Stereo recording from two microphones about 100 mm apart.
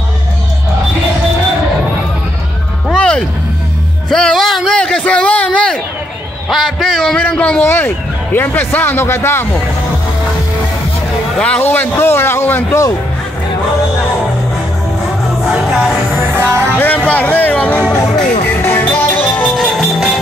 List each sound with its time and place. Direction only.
2.9 s music: 5° left (ahead or behind)
4.7 s a sound: 10° left (ahead or behind)
6.5 s a man's voice: centre (ahead or behind); by 9.6 s 25° left (ahead or behind)
11.3 s a man's voice: 10° left (ahead or behind)
15.4 s music: 5° right (ahead or behind)
16.3 s music: 25° right (ahead or behind)
16.7 s speech: 15° left (ahead or behind)
18.5 s music: 20° left (ahead or behind)
19.2 s music: 5° left (ahead or behind)